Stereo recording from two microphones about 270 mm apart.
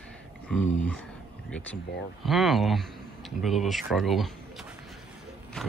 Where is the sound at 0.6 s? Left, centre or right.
Left.